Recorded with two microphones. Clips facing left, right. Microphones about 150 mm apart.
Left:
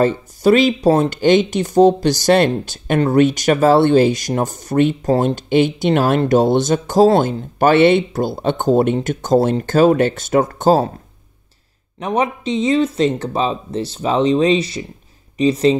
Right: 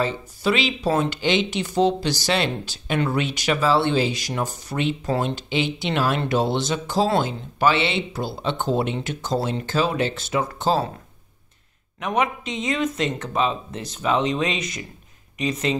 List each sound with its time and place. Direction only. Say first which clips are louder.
0.0 s speech: left 9 dB; 45° left (ahead or behind)
12.0 s speech: left 4 dB; 30° left (ahead or behind)